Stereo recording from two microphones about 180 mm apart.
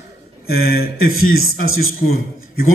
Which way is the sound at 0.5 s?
55° left (ahead or behind).